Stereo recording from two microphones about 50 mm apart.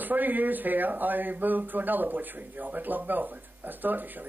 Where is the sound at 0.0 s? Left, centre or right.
Right.